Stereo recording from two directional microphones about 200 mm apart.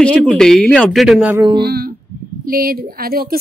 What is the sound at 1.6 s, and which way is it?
Speech, 50° right (ahead or behind).